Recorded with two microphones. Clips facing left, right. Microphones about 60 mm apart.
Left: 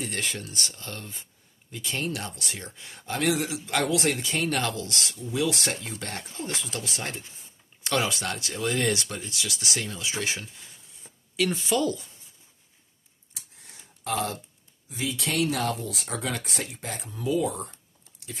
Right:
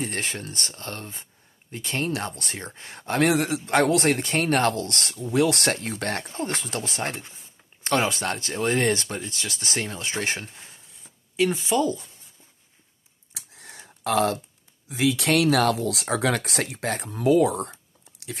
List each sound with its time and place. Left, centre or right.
0.0 s speech: right
5.1 s speech: right
11.3 s speech: right
13.3 s a sound: right
14.9 s speech: right